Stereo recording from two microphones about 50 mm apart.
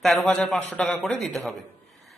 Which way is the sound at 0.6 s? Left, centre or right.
Left.